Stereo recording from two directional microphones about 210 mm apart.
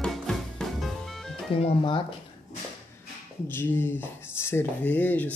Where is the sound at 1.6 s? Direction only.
25° left (ahead or behind).